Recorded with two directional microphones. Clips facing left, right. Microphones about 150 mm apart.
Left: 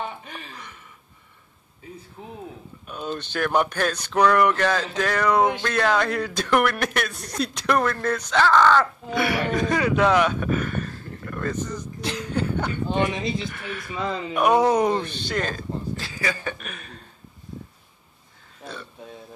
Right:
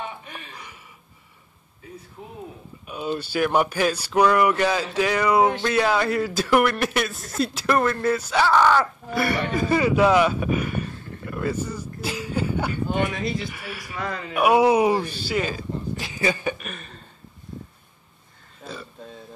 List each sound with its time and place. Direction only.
2.9 s a man's voice: 10° right (ahead or behind)
13.9 s speech: 20° left (ahead or behind)
14.3 s speech: 10° right (ahead or behind)
16.1 s speech: 20° right (ahead or behind)
16.5 s a man's voice: centre (ahead or behind)
18.6 s a sound: centre (ahead or behind)